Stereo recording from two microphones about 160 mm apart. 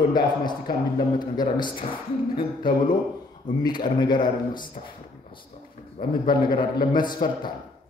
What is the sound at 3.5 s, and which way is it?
Speech, 50° left (ahead or behind).